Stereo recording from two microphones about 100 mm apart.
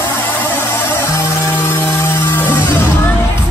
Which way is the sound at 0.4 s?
25° left (ahead or behind).